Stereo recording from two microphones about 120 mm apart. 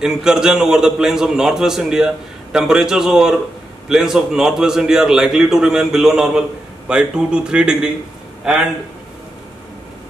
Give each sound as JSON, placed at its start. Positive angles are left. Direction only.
{"t": 0.0, "sound": "a man's voice", "side_deg": -5}